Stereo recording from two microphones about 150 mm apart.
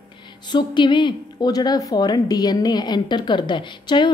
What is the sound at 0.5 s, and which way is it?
A woman's voice, 30° left (ahead or behind).